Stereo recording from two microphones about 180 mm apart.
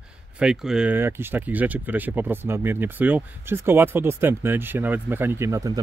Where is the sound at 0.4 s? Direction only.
5° right (ahead or behind).